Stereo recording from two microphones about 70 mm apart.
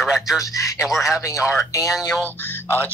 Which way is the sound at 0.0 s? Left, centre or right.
Centre.